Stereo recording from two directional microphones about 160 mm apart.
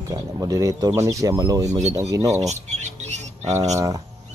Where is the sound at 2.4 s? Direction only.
45° right (ahead or behind).